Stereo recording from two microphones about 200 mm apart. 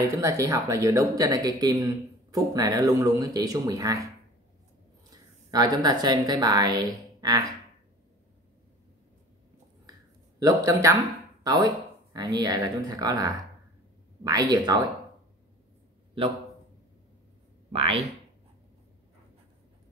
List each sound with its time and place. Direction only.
0.2 s speech: 15° right (ahead or behind)
5.1 s a woman's voice: 20° right (ahead or behind)
10.4 s speech: 15° right (ahead or behind)
17.7 s speech: 30° right (ahead or behind)